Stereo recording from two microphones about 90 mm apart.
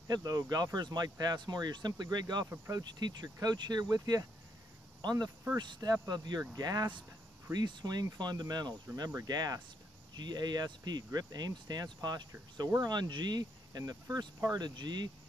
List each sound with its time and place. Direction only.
0.1 s speech: 45° right (ahead or behind)